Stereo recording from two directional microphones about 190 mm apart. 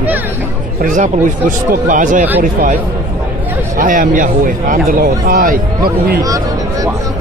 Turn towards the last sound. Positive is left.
turn(degrees=-55)  # may be behind; listen again after turning